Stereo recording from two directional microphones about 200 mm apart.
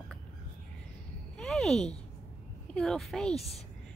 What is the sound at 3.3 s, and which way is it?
Speech, 30° left (ahead or behind).